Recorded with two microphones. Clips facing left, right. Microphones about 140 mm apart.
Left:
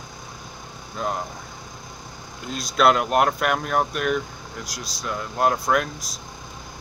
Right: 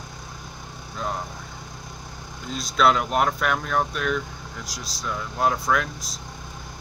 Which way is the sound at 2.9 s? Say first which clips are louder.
Left 3 dB; 5° left (ahead or behind).